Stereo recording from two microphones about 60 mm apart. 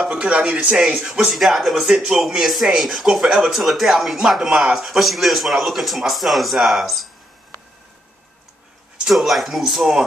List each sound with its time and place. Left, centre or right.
0.1 s a man's voice: centre
1.3 s speech: centre
4.7 s speech: centre
9.1 s speech: centre